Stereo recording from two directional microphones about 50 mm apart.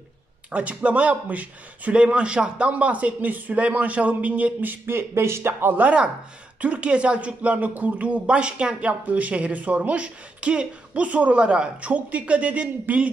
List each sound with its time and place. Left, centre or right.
0.5 s a man's voice: right
4.9 s speech: right
6.6 s speech: right